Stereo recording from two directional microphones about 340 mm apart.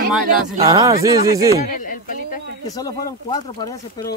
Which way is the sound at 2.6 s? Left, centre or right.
Centre.